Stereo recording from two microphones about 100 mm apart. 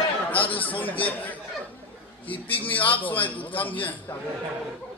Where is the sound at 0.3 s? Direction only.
15° left (ahead or behind).